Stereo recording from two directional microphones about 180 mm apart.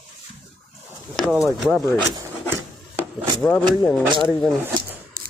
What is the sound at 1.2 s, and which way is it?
Speech, centre (ahead or behind).